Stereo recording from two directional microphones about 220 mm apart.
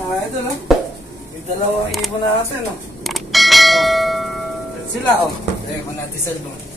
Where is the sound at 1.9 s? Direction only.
Centre (ahead or behind).